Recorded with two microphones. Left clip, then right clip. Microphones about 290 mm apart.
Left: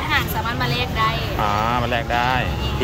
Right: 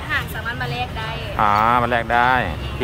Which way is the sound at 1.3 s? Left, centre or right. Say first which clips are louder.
Right 9 dB; centre.